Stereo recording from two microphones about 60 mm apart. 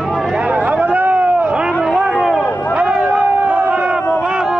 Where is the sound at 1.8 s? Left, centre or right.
Centre.